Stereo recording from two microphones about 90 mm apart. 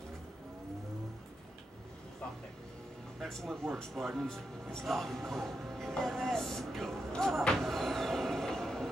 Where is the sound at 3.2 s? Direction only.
5° left (ahead or behind).